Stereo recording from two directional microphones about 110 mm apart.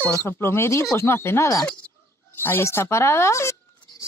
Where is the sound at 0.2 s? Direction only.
20° left (ahead or behind).